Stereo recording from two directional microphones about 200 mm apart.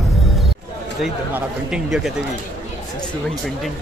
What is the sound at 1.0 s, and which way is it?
Speech, 5° right (ahead or behind).